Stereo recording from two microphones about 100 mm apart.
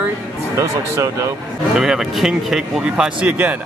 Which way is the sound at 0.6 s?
30° right (ahead or behind).